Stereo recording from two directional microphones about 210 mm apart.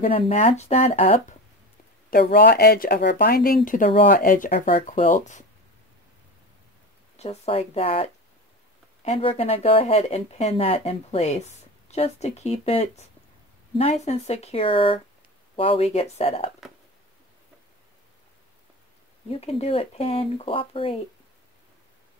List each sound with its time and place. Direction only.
0.1 s speech: 25° left (ahead or behind)
2.0 s speech: 45° left (ahead or behind)
7.2 s speech: 30° left (ahead or behind)
19.3 s speech: 30° left (ahead or behind)